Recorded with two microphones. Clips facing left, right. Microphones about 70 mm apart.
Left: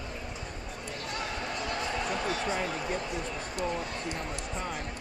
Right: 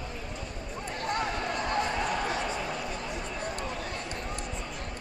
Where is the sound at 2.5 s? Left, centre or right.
Left.